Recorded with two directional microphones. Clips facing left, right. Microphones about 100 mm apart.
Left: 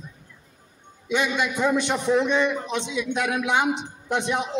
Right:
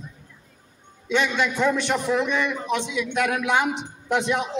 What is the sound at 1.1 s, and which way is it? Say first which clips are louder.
A man's voice: right 1 dB; 15° left (ahead or behind).